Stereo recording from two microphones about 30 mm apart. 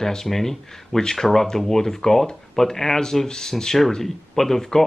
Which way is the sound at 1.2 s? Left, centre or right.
Centre.